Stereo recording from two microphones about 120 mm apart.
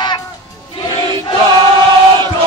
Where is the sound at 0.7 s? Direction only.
40° left (ahead or behind).